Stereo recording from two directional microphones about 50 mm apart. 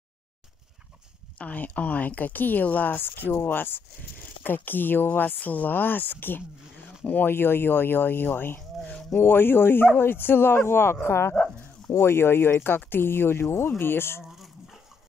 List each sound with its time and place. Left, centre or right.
1.4 s speech: left
8.8 s a sound: centre
9.2 s speech: left
14.2 s dog: centre